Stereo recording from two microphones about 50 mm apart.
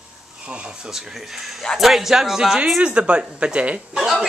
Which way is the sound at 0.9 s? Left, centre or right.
Centre.